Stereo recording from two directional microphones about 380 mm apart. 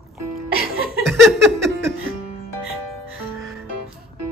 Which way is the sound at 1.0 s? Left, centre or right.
Centre.